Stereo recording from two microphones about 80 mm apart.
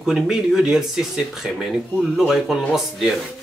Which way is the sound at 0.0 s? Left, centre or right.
Centre.